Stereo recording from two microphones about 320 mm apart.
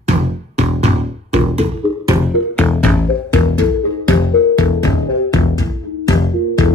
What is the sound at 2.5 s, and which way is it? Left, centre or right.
Music, centre.